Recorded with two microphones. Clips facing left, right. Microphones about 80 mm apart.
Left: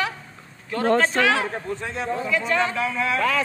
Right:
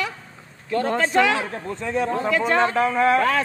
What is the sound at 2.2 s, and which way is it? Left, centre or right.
A man's voice, right.